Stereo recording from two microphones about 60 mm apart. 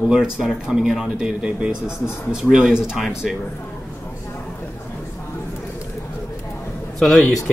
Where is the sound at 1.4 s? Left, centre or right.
Centre.